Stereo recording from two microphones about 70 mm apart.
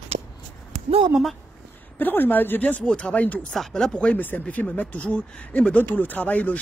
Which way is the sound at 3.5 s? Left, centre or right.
Centre.